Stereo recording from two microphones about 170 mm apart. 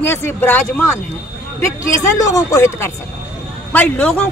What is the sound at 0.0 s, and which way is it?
Speech, 15° left (ahead or behind).